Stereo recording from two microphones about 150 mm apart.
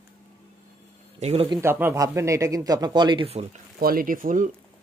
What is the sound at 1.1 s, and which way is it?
Speech, 45° right (ahead or behind).